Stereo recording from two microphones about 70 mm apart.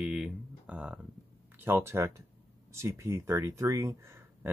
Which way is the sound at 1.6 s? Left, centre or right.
Right.